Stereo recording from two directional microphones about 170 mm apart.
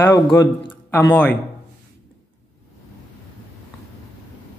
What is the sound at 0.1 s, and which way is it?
Speech, 20° left (ahead or behind).